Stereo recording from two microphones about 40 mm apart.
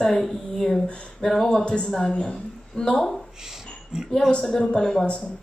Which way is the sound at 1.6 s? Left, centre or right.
Left.